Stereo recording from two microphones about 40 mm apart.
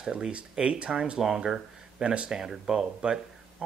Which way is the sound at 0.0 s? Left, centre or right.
Right.